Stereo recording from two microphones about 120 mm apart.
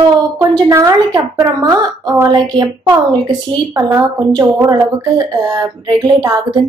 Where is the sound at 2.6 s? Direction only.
35° right (ahead or behind).